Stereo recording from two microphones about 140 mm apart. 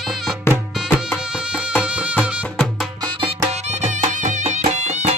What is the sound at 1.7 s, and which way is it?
Music, 5° right (ahead or behind).